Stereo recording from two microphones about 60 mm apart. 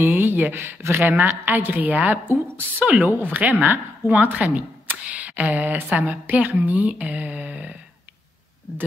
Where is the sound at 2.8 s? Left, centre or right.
Right.